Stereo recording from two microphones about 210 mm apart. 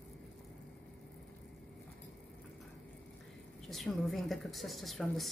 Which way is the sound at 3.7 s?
Centre (ahead or behind).